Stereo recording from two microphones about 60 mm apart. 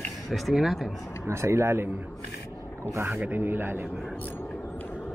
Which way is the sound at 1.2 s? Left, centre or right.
Right.